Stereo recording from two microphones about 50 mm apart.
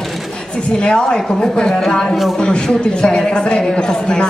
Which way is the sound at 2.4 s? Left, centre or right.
Centre.